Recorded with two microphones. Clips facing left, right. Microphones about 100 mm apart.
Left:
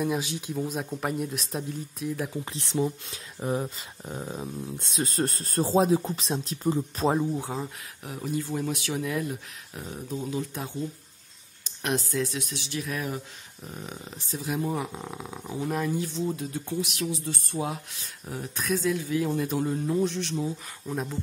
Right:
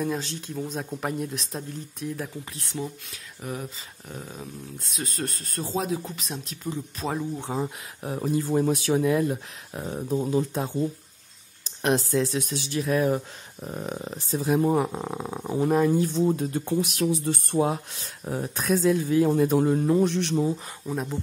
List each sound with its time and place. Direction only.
0.0 s speech: 10° left (ahead or behind)
2.7 s speech: 25° left (ahead or behind)
7.6 s speech: 35° right (ahead or behind)
11.8 s speech: 35° right (ahead or behind); by 17.6 s 55° right (ahead or behind)
18.2 s speech: 45° right (ahead or behind); by 20.5 s 65° right (ahead or behind)
20.8 s speech: centre (ahead or behind)